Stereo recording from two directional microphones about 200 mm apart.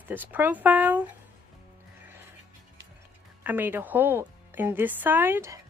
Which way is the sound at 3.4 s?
10° right (ahead or behind).